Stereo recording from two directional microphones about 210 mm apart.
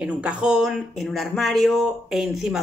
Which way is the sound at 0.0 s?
5° right (ahead or behind).